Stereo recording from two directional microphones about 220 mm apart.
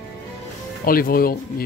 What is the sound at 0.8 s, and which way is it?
Speech, 40° left (ahead or behind).